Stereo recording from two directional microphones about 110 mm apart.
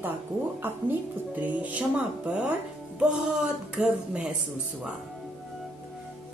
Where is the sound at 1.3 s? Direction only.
15° right (ahead or behind).